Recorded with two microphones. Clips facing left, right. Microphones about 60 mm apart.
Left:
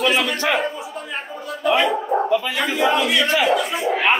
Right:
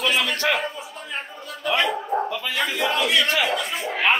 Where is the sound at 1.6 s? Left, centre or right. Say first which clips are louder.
Left 4 dB; centre.